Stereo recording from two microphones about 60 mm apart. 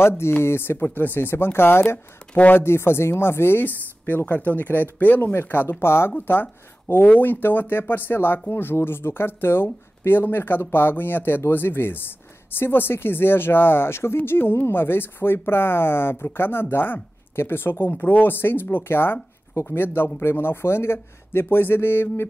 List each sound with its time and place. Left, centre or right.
0.2 s speech: left
2.3 s speech: left
2.6 s speech: left
6.1 s speech: left